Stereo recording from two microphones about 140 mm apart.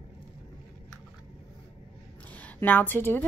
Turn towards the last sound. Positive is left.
turn(degrees=15)  # may be behind; listen again after turning